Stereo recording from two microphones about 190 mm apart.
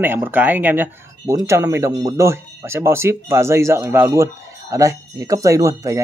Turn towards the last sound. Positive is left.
turn(degrees=-15)  # may be behind; listen again after turning